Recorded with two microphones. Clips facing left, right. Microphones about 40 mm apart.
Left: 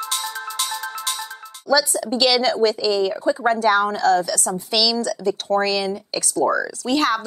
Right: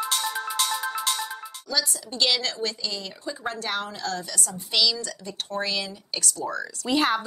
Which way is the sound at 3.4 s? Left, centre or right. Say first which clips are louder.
Left 12 dB; left.